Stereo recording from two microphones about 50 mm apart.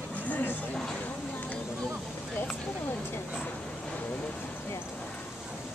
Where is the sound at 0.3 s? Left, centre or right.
Left.